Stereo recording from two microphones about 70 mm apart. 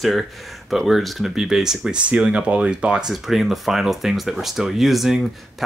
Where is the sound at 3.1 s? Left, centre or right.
Centre.